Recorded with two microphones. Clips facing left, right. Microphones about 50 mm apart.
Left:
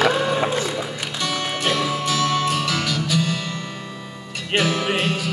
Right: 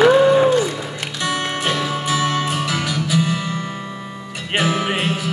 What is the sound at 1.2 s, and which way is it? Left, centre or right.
Music, centre.